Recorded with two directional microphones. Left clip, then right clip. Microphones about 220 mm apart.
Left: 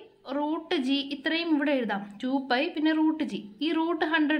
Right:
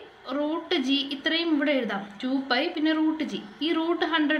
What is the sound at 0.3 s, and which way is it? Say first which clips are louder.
A woman's voice: right 2 dB; 5° left (ahead or behind).